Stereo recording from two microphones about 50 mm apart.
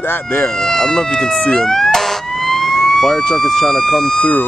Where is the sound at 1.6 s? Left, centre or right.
Centre.